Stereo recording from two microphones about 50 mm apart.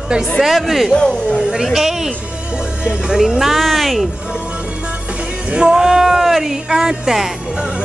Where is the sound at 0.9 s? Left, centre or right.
Centre.